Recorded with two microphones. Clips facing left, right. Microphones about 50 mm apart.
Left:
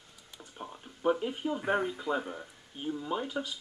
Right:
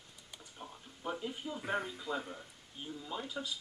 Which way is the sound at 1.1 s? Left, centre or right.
Left.